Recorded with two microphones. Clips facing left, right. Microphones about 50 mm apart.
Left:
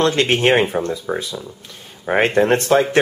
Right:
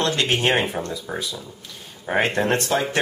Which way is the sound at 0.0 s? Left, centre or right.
Left.